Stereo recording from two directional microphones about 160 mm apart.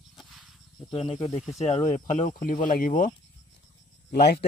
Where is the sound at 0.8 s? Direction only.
35° left (ahead or behind); by 3.1 s 60° left (ahead or behind).